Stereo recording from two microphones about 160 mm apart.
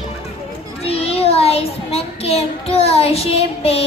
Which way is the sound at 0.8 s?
40° left (ahead or behind).